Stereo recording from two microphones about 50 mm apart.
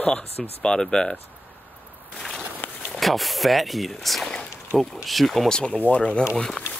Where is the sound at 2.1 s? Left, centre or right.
Centre.